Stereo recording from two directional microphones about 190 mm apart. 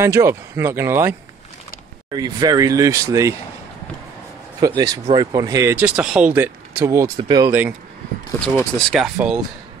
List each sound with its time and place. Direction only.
0.0 s speech: 15° right (ahead or behind)
2.1 s speech: 20° right (ahead or behind)
4.6 s speech: 20° right (ahead or behind); by 9.4 s centre (ahead or behind)